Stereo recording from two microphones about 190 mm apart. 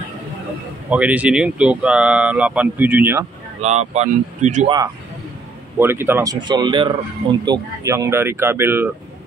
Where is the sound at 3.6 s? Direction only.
35° right (ahead or behind).